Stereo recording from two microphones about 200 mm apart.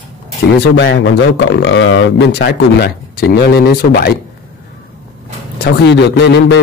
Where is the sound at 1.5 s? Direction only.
65° left (ahead or behind).